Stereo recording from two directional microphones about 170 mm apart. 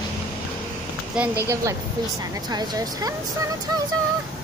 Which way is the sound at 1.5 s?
20° right (ahead or behind).